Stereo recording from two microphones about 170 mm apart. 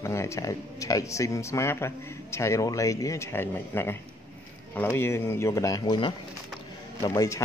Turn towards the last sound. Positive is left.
turn(degrees=20)  # may be behind; listen again after turning